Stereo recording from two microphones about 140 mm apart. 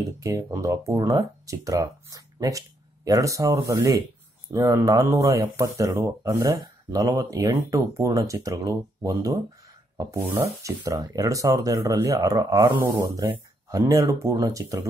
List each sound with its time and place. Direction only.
0.0 s speech: 25° right (ahead or behind)